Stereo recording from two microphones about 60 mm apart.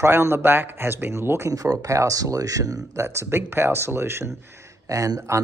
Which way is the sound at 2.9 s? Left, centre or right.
Right.